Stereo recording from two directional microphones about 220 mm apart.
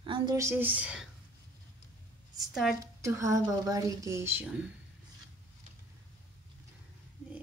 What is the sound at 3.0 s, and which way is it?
A woman's voice, 15° right (ahead or behind).